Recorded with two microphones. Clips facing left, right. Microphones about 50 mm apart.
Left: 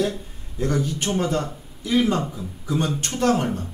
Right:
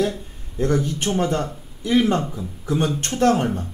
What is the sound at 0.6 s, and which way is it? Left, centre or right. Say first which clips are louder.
A man's voice: right 3 dB; right.